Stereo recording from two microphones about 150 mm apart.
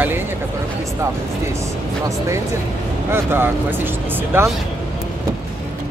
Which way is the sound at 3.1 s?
15° right (ahead or behind).